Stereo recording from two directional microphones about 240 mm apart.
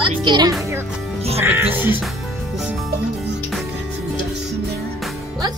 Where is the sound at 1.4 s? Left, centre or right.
Centre.